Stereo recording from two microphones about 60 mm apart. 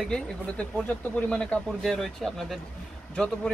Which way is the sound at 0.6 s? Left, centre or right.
Left.